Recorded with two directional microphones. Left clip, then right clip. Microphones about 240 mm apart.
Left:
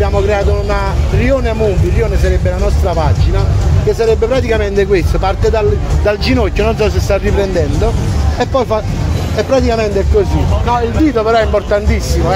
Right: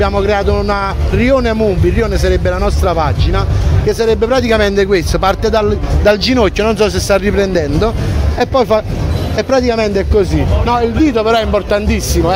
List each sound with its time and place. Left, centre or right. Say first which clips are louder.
0.0 s speech: right 1 dB; right